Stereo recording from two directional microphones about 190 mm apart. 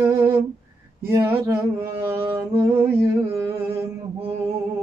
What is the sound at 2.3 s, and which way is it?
Humming, 15° right (ahead or behind).